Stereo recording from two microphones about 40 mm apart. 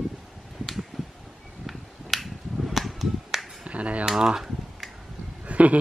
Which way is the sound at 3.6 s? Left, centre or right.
Right.